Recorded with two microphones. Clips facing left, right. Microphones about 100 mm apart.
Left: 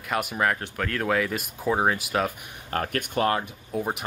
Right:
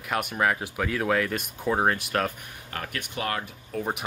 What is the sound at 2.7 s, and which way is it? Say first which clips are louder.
Speech: left 7 dB; 45° left (ahead or behind).